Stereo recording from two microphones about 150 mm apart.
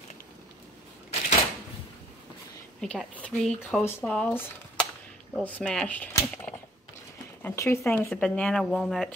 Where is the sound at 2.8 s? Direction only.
5° left (ahead or behind).